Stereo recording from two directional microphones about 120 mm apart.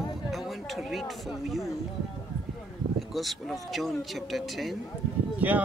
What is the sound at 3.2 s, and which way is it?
Speech, centre (ahead or behind).